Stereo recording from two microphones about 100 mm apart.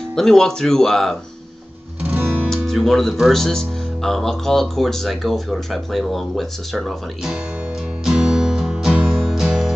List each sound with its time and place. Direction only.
0.1 s speech: 5° left (ahead or behind)
2.0 s music: 20° right (ahead or behind)
2.5 s speech: centre (ahead or behind)
8.0 s music: 5° right (ahead or behind)